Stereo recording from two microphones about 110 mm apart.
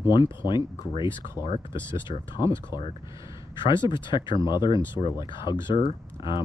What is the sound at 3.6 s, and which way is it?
Speech, 45° left (ahead or behind).